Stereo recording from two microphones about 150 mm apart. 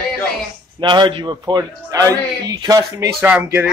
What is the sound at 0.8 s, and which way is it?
A man's voice, 30° right (ahead or behind).